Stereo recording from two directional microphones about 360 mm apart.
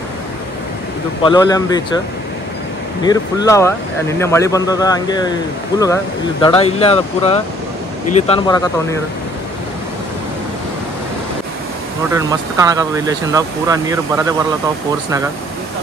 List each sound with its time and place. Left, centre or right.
1.2 s a man's voice: centre
3.0 s a man's voice: centre
6.4 s a man's voice: centre
12.1 s speech: centre